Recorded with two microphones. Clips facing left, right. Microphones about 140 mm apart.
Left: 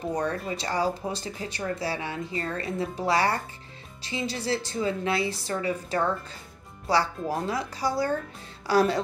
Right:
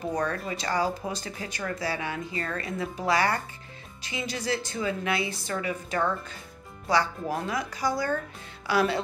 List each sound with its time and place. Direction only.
0.1 s speech: 30° left (ahead or behind)